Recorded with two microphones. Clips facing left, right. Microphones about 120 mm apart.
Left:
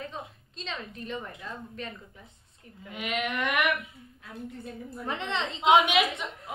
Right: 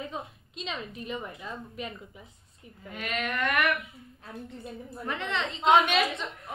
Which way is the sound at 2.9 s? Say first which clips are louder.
Left 1 dB; 15° left (ahead or behind).